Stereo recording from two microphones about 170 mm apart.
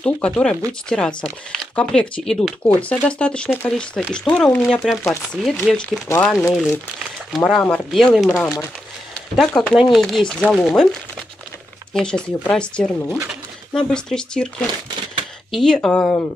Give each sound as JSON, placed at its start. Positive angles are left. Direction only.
{"t": 0.0, "sound": "speech", "side_deg": 5}
{"t": 7.3, "sound": "speech", "side_deg": 0}
{"t": 8.4, "sound": "speech", "side_deg": 15}
{"t": 9.1, "sound": "speech", "side_deg": 5}
{"t": 15.5, "sound": "speech", "side_deg": 5}